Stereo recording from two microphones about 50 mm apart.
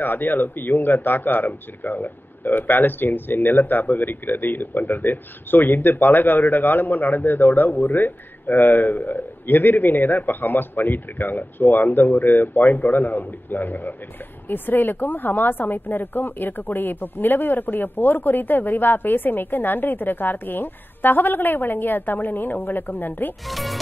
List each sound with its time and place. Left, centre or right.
0.0 s a man's voice: left
23.4 s speech: centre